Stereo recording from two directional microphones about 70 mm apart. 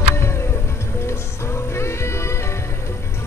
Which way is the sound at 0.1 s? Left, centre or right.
Left.